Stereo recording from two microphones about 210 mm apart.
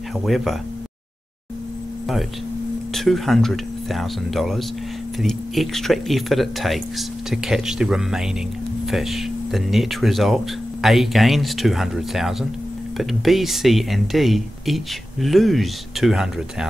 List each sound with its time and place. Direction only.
0.2 s speech: centre (ahead or behind)
2.9 s speech: centre (ahead or behind)